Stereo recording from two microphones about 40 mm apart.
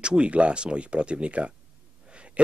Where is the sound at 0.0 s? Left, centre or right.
Right.